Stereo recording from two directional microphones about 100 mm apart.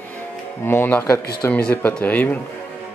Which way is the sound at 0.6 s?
20° left (ahead or behind).